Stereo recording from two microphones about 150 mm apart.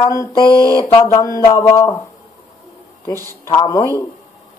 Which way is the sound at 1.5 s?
20° left (ahead or behind).